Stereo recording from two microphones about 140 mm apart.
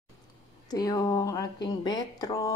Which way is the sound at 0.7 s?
25° left (ahead or behind).